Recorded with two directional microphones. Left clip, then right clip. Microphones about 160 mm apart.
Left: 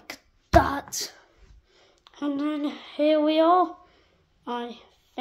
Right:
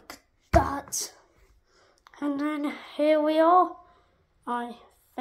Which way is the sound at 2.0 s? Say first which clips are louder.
Left 1 dB; centre (ahead or behind).